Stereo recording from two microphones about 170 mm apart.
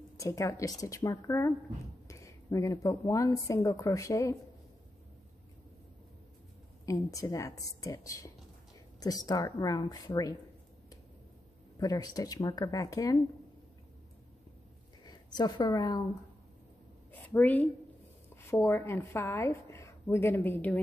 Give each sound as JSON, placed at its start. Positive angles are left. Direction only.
{"t": 0.2, "sound": "a woman's voice", "side_deg": 20}
{"t": 6.9, "sound": "a woman's voice", "side_deg": 20}
{"t": 11.8, "sound": "a woman's voice", "side_deg": 20}
{"t": 15.0, "sound": "a woman's voice", "side_deg": 25}
{"t": 17.1, "sound": "a woman's voice", "side_deg": 10}